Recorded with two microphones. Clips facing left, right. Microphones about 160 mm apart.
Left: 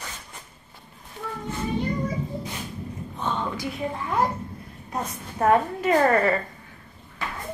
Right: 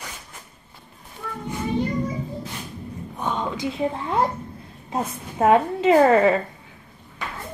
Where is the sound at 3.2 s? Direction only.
15° right (ahead or behind).